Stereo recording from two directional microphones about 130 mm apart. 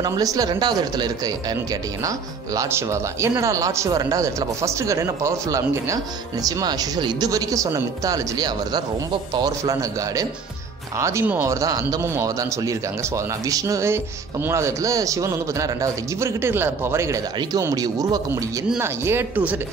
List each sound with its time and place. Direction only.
0.0 s a man's voice: 30° right (ahead or behind)